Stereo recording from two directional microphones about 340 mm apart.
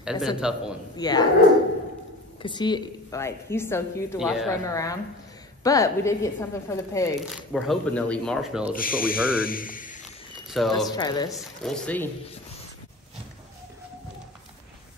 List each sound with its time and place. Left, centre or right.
0.0 s a man's voice: centre
0.9 s speech: centre
2.4 s a woman's voice: centre
8.7 s speech: left
9.1 s a woman's voice: centre
9.4 s a man's voice: left
10.5 s a woman's voice: centre
10.9 s speech: centre
11.3 s a woman's voice: centre